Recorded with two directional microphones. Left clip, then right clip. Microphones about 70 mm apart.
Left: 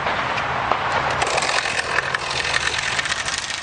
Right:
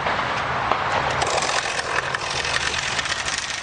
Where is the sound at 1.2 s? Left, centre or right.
Centre.